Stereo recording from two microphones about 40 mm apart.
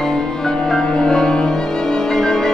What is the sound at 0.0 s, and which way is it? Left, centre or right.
Cello, centre.